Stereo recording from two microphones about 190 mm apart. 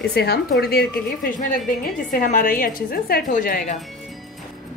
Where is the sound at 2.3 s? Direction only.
45° left (ahead or behind).